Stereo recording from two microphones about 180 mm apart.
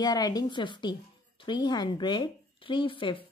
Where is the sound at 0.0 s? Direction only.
20° left (ahead or behind).